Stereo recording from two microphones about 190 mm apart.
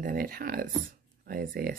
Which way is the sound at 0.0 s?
50° right (ahead or behind).